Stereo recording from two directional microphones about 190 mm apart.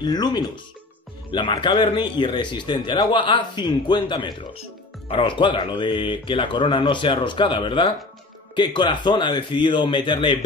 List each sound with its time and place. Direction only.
0.0 s speech: 20° left (ahead or behind)